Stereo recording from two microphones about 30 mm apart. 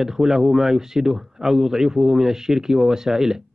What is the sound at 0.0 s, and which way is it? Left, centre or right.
A man's voice, centre.